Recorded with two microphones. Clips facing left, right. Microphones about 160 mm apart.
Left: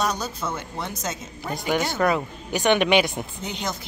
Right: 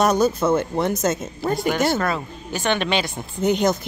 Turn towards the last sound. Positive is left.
turn(degrees=-50)  # may be behind; listen again after turning